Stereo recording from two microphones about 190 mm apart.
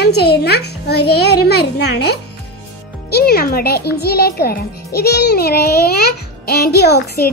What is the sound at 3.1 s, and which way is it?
A child's voice, 55° left (ahead or behind).